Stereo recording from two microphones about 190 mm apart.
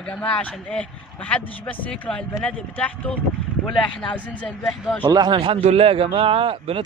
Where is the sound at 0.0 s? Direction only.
5° left (ahead or behind).